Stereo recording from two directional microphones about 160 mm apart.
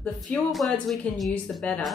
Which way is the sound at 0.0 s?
5° left (ahead or behind).